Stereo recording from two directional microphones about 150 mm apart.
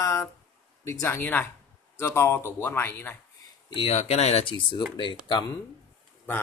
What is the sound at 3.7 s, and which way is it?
Speech, 45° left (ahead or behind).